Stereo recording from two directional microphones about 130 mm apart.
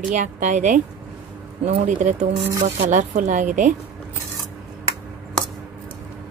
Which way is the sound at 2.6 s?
60° right (ahead or behind).